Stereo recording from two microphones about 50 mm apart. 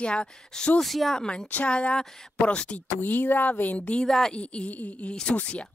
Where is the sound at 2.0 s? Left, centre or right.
Centre.